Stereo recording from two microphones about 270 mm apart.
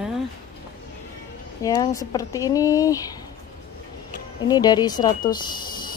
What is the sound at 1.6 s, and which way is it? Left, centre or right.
Speech, centre.